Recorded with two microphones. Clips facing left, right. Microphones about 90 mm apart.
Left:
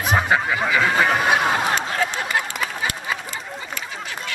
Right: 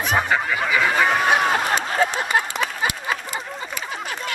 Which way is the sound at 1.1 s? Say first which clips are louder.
Even; 5° left (ahead or behind).